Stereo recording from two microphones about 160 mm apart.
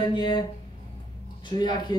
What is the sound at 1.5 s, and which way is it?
Speech, 25° left (ahead or behind).